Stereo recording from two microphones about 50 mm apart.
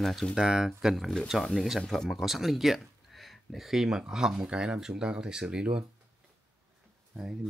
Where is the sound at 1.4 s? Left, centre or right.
Centre.